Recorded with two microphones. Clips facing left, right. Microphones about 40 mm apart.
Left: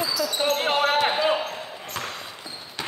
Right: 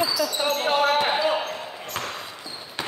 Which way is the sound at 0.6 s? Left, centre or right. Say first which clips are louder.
Right 3 dB; left.